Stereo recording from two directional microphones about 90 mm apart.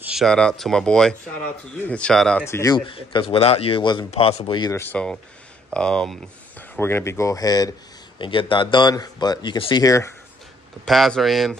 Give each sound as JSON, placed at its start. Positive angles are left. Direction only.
{"t": 0.3, "sound": "speech", "side_deg": 5}
{"t": 2.4, "sound": "speech", "side_deg": 30}
{"t": 2.9, "sound": "speech", "side_deg": 75}
{"t": 4.9, "sound": "speech", "side_deg": 10}
{"t": 6.8, "sound": "speech", "side_deg": 25}
{"t": 8.2, "sound": "speech", "side_deg": 70}
{"t": 8.9, "sound": "speech", "side_deg": 45}
{"t": 9.8, "sound": "speech", "side_deg": 35}
{"t": 10.9, "sound": "speech", "side_deg": 5}